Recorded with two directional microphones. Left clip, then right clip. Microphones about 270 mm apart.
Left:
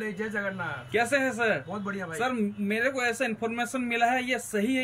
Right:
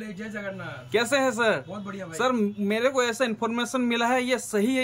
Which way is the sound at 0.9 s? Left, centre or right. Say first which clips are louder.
Right 3 dB; centre.